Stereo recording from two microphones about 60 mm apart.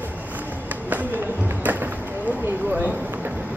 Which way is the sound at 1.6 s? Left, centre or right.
Right.